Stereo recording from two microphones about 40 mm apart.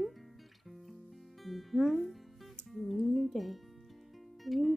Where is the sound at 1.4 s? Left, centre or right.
Centre.